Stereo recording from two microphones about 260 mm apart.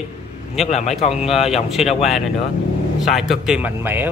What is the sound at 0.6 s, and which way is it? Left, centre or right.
Speech, left.